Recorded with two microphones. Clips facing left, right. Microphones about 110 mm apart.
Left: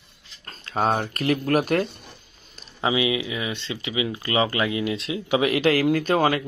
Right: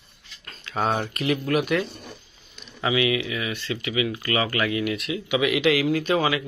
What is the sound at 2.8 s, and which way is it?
Speech, 25° left (ahead or behind).